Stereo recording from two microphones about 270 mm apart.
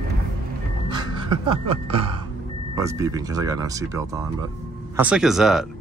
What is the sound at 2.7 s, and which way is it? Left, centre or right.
Speech, centre.